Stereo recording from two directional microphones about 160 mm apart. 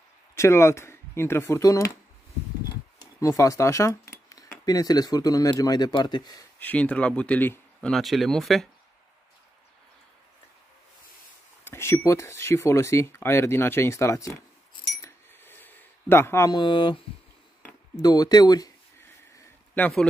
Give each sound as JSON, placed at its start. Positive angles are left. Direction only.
{"t": 0.3, "sound": "speech", "side_deg": 15}
{"t": 3.2, "sound": "speech", "side_deg": 20}
{"t": 6.6, "sound": "speech", "side_deg": 10}
{"t": 7.9, "sound": "speech", "side_deg": 0}
{"t": 11.6, "sound": "speech", "side_deg": 15}
{"t": 15.0, "sound": "a sound", "side_deg": 15}
{"t": 18.0, "sound": "a sound", "side_deg": 25}